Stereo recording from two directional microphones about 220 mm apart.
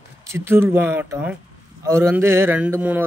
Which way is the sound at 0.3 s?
10° right (ahead or behind).